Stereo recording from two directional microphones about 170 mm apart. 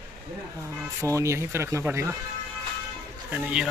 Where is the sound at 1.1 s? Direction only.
15° right (ahead or behind).